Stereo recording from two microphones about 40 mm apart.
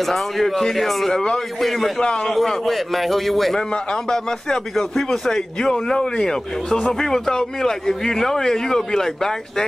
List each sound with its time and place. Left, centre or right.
0.0 s a man's voice: centre
1.1 s a man's voice: centre
1.6 s a man's voice: centre
2.0 s a man's voice: centre
2.3 s a man's voice: centre
3.7 s a man's voice: centre